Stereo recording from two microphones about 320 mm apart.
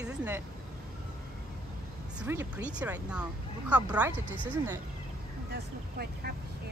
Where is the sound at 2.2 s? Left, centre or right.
Centre.